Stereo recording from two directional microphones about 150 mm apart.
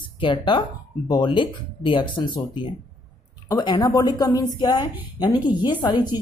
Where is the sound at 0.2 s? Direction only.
35° left (ahead or behind).